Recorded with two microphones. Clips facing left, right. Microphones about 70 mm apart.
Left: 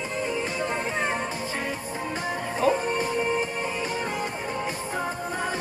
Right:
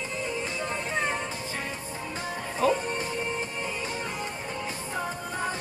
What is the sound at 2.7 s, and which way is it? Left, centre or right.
Music, left.